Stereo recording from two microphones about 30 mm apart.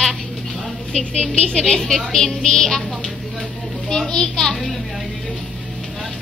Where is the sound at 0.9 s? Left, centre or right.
Left.